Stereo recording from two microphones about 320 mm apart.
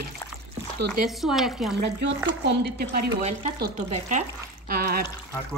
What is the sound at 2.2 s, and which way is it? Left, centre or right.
Speech, right.